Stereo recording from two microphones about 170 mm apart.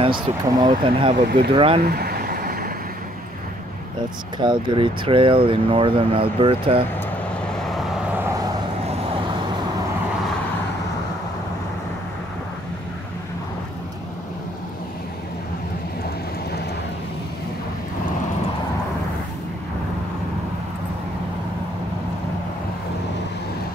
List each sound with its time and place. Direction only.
0.0 s speech: 25° right (ahead or behind)
1.8 s a sound: 65° right (ahead or behind)
4.4 s speech: 25° right (ahead or behind)